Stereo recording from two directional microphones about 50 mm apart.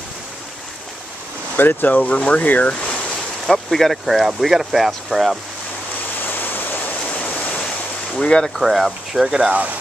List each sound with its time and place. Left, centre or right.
1.6 s speech: left
3.5 s speech: centre
6.2 s waterfall: left
8.2 s speech: centre
8.5 s speech: centre
9.5 s speech: right